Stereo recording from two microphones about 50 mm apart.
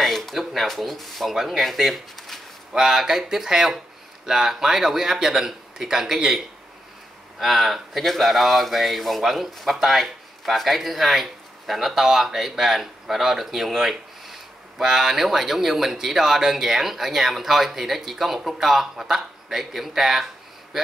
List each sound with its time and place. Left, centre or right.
0.0 s a sound: centre
1.3 s speech: centre
2.7 s speech: centre